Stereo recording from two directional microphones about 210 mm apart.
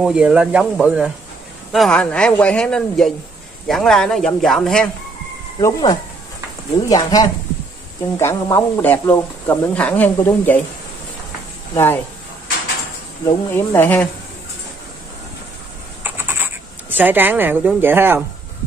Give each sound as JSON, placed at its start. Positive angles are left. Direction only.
{"t": 0.0, "sound": "speech", "side_deg": -5}
{"t": 5.6, "sound": "speech", "side_deg": 15}
{"t": 11.7, "sound": "speech", "side_deg": 10}
{"t": 13.2, "sound": "speech", "side_deg": 15}
{"t": 16.0, "sound": "a sound", "side_deg": -10}